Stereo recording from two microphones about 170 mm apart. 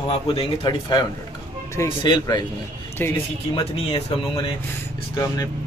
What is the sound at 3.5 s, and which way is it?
Speech, 35° left (ahead or behind).